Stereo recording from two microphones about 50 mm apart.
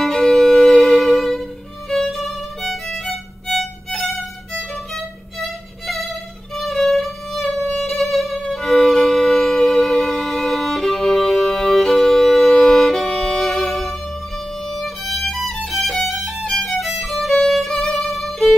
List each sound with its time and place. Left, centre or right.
0.0 s violin: centre
1.9 s music: centre
3.4 s violin: centre
7.8 s music: centre
8.5 s violin: centre